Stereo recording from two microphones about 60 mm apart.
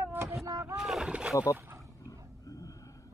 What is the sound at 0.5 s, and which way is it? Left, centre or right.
Boat, right.